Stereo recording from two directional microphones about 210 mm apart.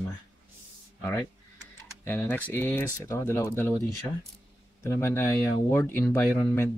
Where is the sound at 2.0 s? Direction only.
10° left (ahead or behind).